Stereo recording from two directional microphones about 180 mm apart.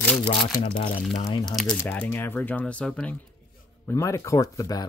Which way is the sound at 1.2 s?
25° left (ahead or behind).